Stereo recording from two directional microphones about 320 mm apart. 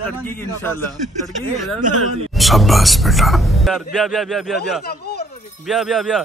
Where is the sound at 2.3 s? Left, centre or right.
Centre.